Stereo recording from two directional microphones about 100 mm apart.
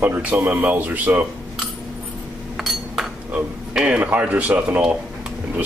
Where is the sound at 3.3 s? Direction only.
10° right (ahead or behind).